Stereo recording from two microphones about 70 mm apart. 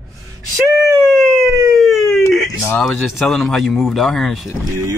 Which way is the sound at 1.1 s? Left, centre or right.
Centre.